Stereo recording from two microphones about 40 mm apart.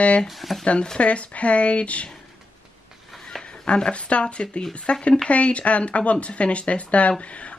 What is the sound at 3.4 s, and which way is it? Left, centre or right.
Speech, left.